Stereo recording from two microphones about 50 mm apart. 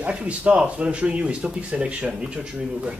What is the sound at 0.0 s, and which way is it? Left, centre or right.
Speech, right.